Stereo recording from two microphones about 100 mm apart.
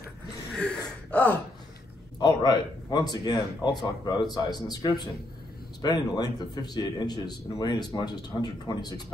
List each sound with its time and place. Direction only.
0.6 s gasp: 10° left (ahead or behind)
2.1 s speech: 45° left (ahead or behind)